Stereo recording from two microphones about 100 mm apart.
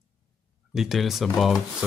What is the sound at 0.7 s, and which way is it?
Speech, 5° right (ahead or behind).